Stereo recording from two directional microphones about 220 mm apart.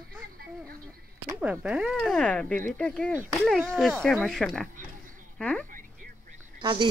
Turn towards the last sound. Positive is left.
turn(degrees=-20)  # may be behind; listen again after turning